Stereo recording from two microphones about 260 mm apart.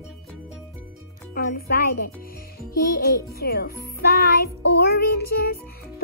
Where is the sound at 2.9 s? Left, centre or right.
Left.